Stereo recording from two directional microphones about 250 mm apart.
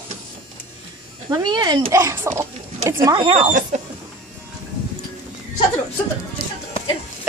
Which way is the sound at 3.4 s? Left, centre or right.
Right.